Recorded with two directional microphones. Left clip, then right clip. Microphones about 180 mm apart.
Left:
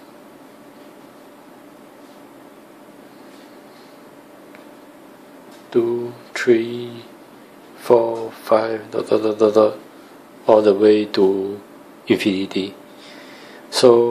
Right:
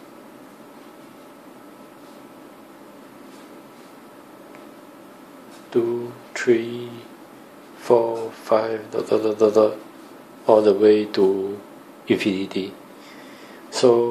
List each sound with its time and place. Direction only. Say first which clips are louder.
5.7 s speech: left 3 dB; 15° left (ahead or behind)